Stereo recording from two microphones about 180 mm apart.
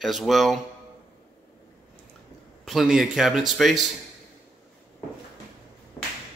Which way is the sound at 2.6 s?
Centre (ahead or behind).